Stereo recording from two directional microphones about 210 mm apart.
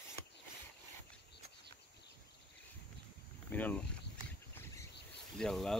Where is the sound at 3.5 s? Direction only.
10° left (ahead or behind).